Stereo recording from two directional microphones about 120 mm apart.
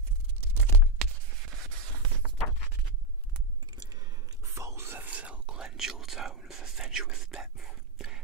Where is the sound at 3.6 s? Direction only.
35° right (ahead or behind).